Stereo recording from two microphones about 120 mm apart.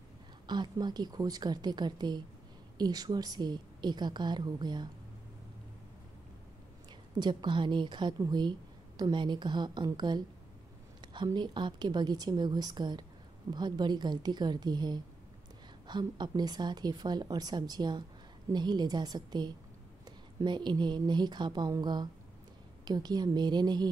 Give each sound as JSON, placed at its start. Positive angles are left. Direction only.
{"t": 0.5, "sound": "a woman's voice", "side_deg": -35}
{"t": 7.2, "sound": "a woman's voice", "side_deg": -40}
{"t": 11.3, "sound": "a woman's voice", "side_deg": -40}